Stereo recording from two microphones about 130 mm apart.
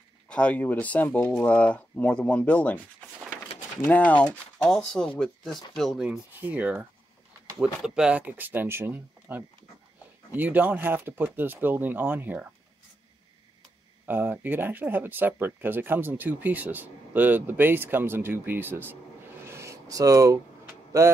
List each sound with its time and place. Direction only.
0.3 s speech: 10° left (ahead or behind)
3.8 s speech: 10° left (ahead or behind); by 12.4 s 15° right (ahead or behind)
14.0 s speech: 15° right (ahead or behind)